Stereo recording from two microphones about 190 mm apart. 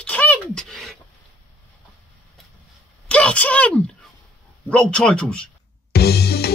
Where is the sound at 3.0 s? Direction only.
5° left (ahead or behind).